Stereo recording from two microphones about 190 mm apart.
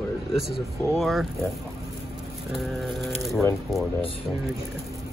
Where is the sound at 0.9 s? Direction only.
Centre (ahead or behind).